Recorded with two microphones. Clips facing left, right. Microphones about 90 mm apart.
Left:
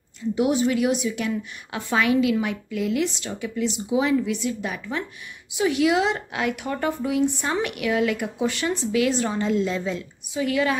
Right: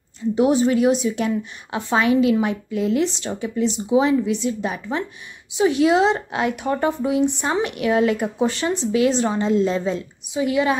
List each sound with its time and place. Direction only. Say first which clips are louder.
0.4 s a woman's voice: right 4 dB; 35° right (ahead or behind)